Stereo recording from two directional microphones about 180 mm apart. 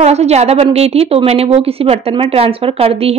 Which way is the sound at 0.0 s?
35° right (ahead or behind).